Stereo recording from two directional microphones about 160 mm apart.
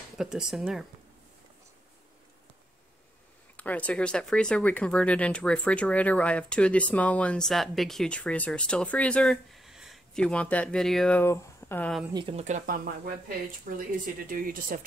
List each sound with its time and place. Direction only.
0.2 s speech: 5° right (ahead or behind)
3.5 s speech: 10° left (ahead or behind)
12.1 s speech: 25° right (ahead or behind)
12.4 s speech: 50° right (ahead or behind)